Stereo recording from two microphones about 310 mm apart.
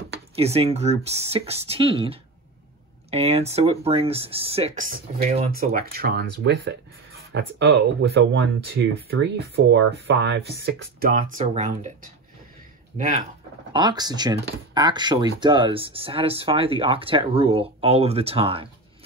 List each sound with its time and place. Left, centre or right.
0.4 s speech: centre
13.7 s speech: centre